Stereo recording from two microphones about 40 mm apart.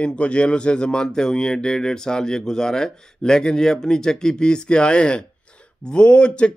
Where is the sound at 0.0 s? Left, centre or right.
Left.